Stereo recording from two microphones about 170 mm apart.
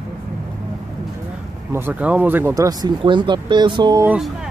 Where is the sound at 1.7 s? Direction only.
10° right (ahead or behind).